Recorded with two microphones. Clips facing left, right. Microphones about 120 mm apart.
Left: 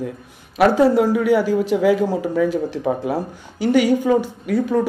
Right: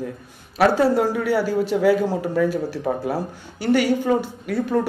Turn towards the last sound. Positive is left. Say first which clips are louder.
# left 3 dB
turn(degrees=15)  # may be behind; listen again after turning